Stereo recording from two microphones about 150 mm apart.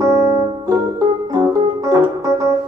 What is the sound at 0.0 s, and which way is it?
Organ, 20° right (ahead or behind).